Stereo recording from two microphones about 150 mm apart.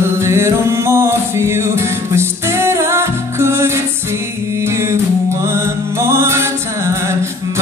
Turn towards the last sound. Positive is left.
turn(degrees=-20)  # may be behind; listen again after turning